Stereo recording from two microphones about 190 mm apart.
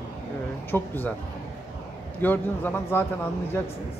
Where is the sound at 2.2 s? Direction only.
10° left (ahead or behind).